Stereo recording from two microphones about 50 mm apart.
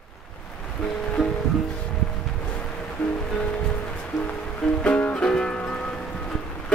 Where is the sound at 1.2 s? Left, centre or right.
Centre.